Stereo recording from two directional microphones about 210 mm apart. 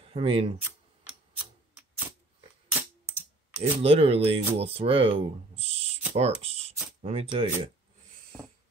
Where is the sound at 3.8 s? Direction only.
25° right (ahead or behind).